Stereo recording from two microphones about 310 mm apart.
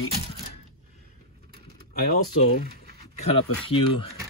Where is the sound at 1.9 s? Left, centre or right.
Left.